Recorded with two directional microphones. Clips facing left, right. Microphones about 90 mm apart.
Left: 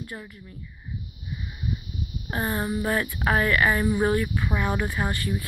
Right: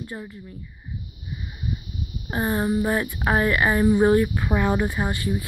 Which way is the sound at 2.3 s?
25° right (ahead or behind).